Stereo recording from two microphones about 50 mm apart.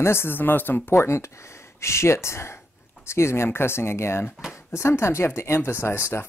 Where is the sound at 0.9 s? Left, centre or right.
Left.